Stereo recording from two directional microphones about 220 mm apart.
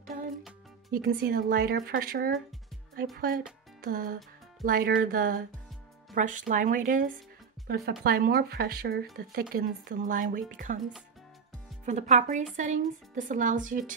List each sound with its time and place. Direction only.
0.9 s speech: 40° right (ahead or behind)
11.8 s speech: 35° right (ahead or behind)